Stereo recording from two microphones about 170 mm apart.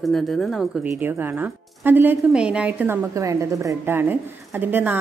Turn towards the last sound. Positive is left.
turn(degrees=-10)  # may be behind; listen again after turning